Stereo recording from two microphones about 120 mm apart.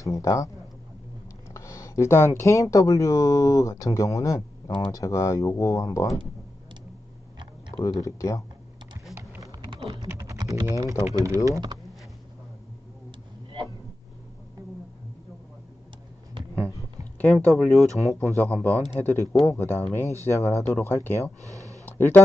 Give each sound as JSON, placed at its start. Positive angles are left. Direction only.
{"t": 0.0, "sound": "speech", "side_deg": 25}
{"t": 1.5, "sound": "speech", "side_deg": 25}
{"t": 7.7, "sound": "speech", "side_deg": 25}
{"t": 9.4, "sound": "a sound", "side_deg": -30}
{"t": 9.8, "sound": "typing", "side_deg": -40}
{"t": 11.1, "sound": "speech", "side_deg": -25}
{"t": 17.2, "sound": "speech", "side_deg": 10}
{"t": 21.4, "sound": "a sound", "side_deg": -25}
{"t": 21.8, "sound": "a sound", "side_deg": 20}